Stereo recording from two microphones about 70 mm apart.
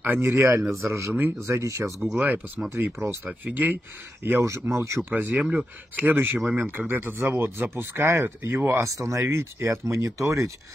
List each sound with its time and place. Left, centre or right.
0.2 s speech: right
1.1 s speech: right
2.1 s speech: right
2.7 s speech: right
3.3 s speech: right
5.3 s speech: centre
5.6 s speech: right